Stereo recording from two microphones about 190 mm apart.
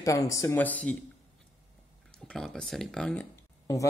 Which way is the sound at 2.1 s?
5° left (ahead or behind).